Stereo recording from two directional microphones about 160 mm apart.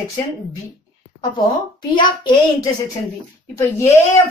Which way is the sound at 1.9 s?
30° left (ahead or behind).